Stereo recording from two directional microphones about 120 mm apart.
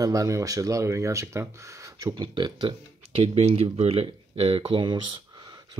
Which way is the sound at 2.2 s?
40° right (ahead or behind).